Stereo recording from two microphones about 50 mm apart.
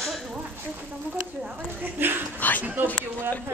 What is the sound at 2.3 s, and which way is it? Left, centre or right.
Speech, left.